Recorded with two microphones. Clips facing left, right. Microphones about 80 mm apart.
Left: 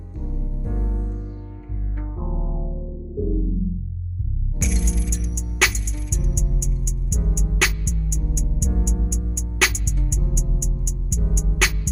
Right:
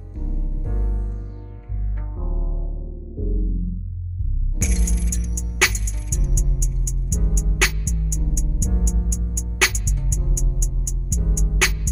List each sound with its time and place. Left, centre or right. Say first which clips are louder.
0.2 s music: left 1 dB; centre
2.1 s music: left 3 dB; centre
4.6 s music: left 1 dB; centre